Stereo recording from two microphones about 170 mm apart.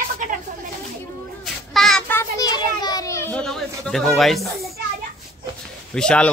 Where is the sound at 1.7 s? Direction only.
5° left (ahead or behind).